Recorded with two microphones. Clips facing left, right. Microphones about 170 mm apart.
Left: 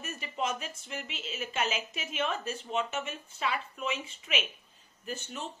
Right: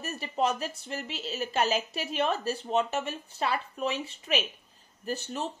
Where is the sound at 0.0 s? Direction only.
35° right (ahead or behind).